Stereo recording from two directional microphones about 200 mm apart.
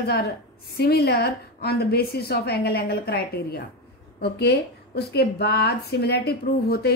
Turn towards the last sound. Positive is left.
turn(degrees=55)  # may be behind; listen again after turning